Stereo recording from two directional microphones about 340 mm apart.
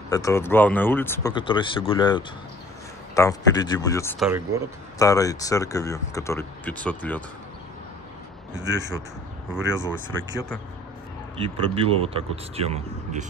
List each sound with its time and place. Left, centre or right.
0.1 s speech: centre
8.5 s speech: right
11.4 s speech: centre